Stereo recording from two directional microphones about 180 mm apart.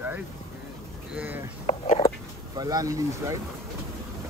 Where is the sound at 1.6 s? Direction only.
40° left (ahead or behind).